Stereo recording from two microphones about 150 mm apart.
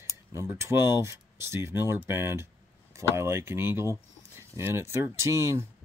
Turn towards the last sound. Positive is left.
turn(degrees=-20)  # may be behind; listen again after turning